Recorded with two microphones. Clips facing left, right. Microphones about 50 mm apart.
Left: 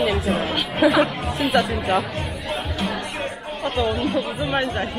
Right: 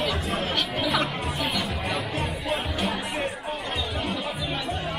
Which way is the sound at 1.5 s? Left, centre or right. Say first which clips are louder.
Left 9 dB; left.